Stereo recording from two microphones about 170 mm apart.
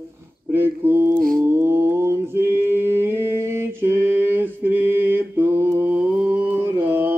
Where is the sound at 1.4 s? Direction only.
15° right (ahead or behind).